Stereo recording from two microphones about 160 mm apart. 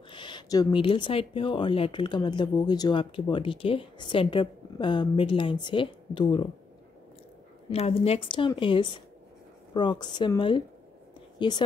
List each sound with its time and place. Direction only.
0.1 s speech: 30° left (ahead or behind)
7.7 s a woman's voice: 40° left (ahead or behind)